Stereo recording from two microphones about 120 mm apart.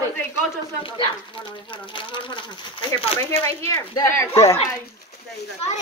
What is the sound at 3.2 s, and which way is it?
Speech, 20° left (ahead or behind).